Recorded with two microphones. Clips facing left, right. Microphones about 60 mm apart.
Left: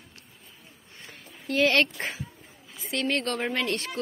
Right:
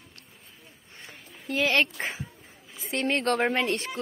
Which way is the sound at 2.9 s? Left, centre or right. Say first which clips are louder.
Right 2 dB; right.